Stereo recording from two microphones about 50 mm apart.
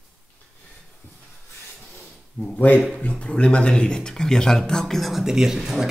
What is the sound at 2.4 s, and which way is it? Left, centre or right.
A man's voice, left.